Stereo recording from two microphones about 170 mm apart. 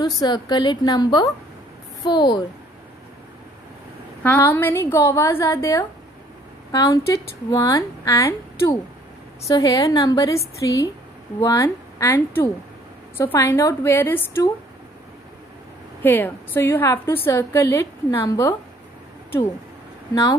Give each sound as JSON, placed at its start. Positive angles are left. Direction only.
{"t": 0.2, "sound": "speech", "side_deg": 25}
{"t": 4.2, "sound": "a woman's voice", "side_deg": 10}
{"t": 16.0, "sound": "a woman's voice", "side_deg": 10}